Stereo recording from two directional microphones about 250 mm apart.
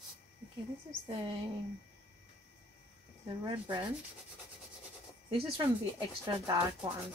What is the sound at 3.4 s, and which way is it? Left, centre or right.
Speech, centre.